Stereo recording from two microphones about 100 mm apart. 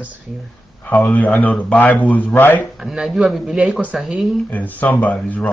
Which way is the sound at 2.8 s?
5° right (ahead or behind).